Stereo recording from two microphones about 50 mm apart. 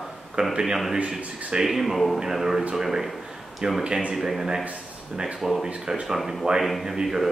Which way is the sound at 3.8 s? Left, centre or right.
Centre.